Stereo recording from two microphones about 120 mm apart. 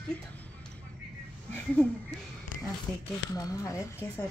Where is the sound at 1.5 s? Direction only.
10° left (ahead or behind).